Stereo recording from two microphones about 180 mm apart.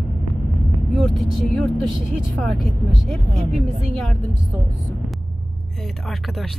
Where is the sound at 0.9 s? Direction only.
Centre (ahead or behind).